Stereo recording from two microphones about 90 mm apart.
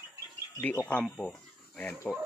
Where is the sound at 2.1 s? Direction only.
Centre (ahead or behind).